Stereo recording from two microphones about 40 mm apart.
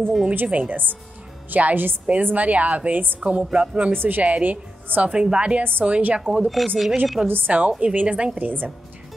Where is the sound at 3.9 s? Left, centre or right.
Right.